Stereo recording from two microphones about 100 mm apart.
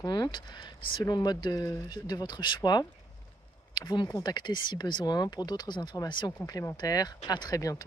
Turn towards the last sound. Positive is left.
turn(degrees=35)  # may be behind; listen again after turning